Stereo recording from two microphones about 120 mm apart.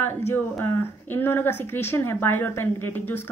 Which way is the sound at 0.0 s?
20° left (ahead or behind).